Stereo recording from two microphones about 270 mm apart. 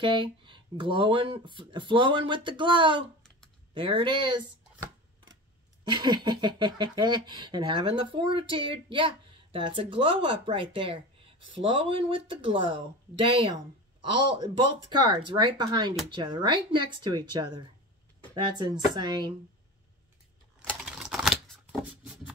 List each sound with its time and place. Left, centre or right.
0.0 s speech: centre
5.9 s speech: centre
20.5 s a sound: centre